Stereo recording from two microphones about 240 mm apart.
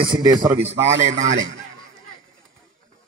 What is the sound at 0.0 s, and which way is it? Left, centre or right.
Speech, centre.